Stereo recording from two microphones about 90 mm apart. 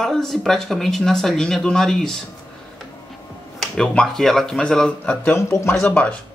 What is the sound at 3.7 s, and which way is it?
Speech, 5° left (ahead or behind).